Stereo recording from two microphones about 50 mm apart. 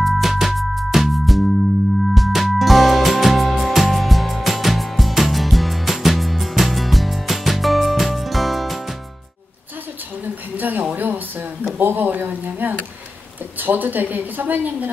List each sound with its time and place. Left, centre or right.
0.0 s music: centre
10.6 s a sound: right
13.6 s a woman's voice: right